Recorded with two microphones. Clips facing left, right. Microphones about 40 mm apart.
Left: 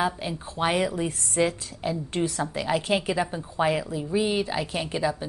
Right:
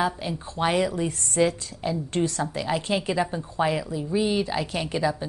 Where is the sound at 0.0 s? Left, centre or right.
Centre.